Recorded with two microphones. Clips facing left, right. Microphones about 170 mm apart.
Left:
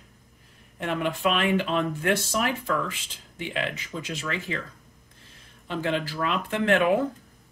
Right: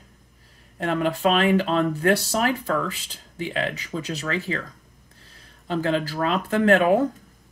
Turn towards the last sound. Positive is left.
turn(degrees=-40)  # may be behind; listen again after turning